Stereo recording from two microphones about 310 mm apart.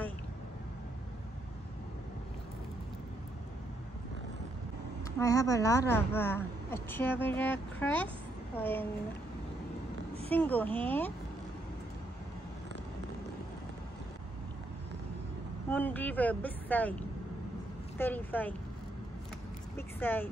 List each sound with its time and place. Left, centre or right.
5.2 s speech: centre
10.3 s speech: centre
15.7 s speech: centre
17.9 s speech: centre
20.0 s speech: centre